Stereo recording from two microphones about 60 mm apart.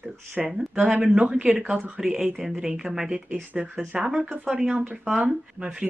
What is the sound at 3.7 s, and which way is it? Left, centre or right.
Speech, centre.